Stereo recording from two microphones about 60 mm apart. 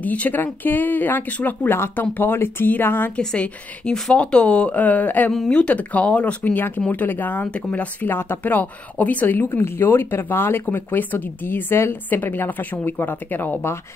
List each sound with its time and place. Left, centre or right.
0.0 s speech: left
3.2 s speech: centre; by 13.7 s left